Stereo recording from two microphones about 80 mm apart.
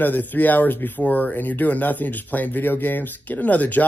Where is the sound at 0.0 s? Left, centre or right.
Left.